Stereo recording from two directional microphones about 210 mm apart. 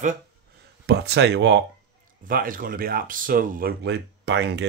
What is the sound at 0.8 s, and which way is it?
Speech, 55° right (ahead or behind).